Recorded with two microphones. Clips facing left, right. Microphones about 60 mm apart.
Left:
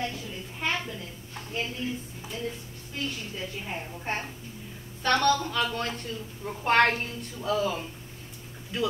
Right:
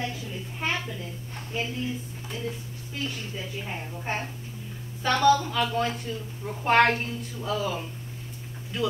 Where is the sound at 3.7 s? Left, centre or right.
Centre.